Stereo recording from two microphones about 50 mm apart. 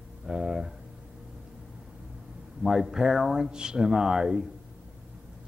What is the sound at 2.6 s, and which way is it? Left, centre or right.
Speech, centre.